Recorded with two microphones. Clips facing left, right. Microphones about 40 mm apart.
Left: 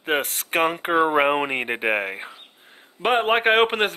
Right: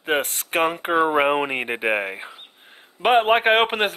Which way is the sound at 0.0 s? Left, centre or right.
Centre.